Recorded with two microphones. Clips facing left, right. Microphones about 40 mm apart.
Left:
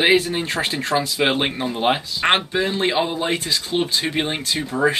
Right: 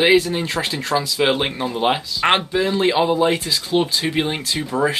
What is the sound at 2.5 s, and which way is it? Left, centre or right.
Speech, left.